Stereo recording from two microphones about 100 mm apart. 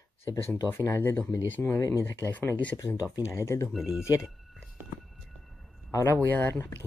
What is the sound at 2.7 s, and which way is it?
Speech, 30° left (ahead or behind).